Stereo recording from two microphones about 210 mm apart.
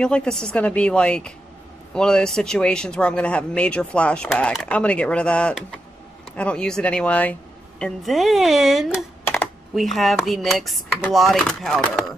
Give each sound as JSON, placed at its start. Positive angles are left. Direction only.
{"t": 0.0, "sound": "speech", "side_deg": 5}